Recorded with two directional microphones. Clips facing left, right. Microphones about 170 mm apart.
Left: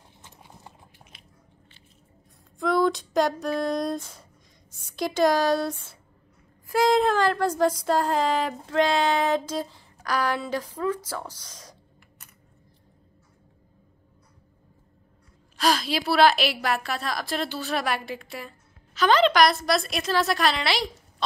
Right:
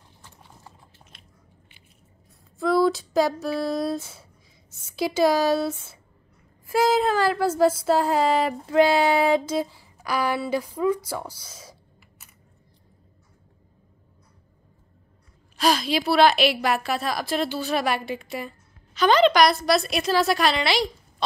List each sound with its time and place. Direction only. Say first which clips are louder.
0.2 s clip-clop: left 1 dB; 20° left (ahead or behind)
2.6 s a sound: right 2 dB; 5° right (ahead or behind)
4.7 s a woman's voice: right 2 dB; 5° right (ahead or behind)
15.5 s a woman's voice: right 2 dB; centre (ahead or behind)